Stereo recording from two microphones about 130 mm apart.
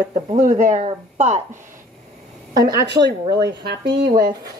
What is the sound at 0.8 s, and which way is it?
Speech, 55° right (ahead or behind).